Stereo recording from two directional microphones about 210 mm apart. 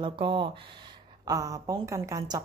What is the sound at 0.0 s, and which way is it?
A woman's voice, 25° right (ahead or behind).